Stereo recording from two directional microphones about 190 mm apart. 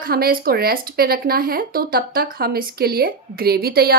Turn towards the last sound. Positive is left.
turn(degrees=-50)  # may be behind; listen again after turning